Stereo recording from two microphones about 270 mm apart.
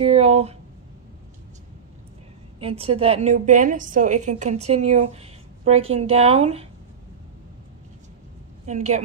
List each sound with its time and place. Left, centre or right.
0.0 s a sound: right
2.6 s a woman's voice: right
8.6 s a woman's voice: right